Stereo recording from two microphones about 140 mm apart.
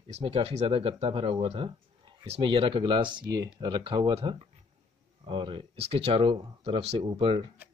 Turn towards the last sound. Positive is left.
turn(degrees=-40)  # may be behind; listen again after turning